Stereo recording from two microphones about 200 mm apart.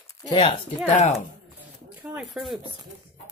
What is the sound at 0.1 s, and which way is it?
Speech, 25° left (ahead or behind).